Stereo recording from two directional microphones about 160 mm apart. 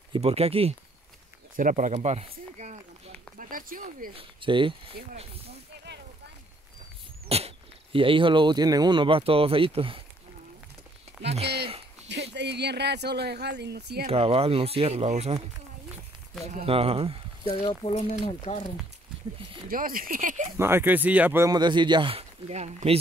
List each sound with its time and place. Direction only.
0.1 s speech: 40° right (ahead or behind)
1.6 s a sound: 55° right (ahead or behind)
3.3 s a sound: 60° right (ahead or behind)
4.1 s speech: 35° right (ahead or behind)
7.2 s speech: 40° right (ahead or behind)
11.2 s speech: 40° right (ahead or behind)
12.3 s speech: 90° right
14.0 s speech: 35° right (ahead or behind)
16.6 s speech: 35° right (ahead or behind)
17.5 s speech: 40° left (ahead or behind)
19.7 s speech: 60° right (ahead or behind)
20.5 s speech: 15° right (ahead or behind)
21.5 s speech: 30° right (ahead or behind)